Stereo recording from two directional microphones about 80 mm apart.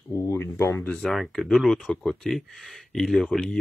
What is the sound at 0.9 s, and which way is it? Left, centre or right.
Speech, centre.